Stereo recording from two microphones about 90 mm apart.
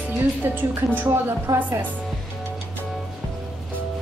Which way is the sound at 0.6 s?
20° right (ahead or behind).